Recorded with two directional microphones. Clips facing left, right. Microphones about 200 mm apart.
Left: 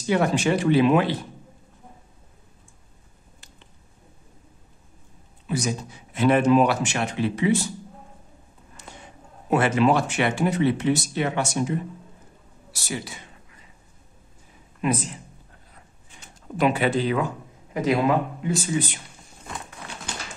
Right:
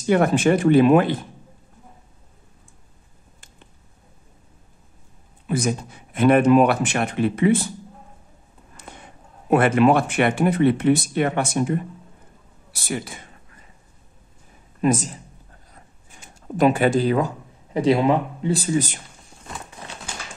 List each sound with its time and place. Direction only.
0.0 s speech: 50° right (ahead or behind)
5.5 s speech: 55° right (ahead or behind)
9.5 s speech: 55° right (ahead or behind)
14.8 s speech: 40° right (ahead or behind)
16.5 s speech: 45° right (ahead or behind)
17.7 s speech: 30° right (ahead or behind)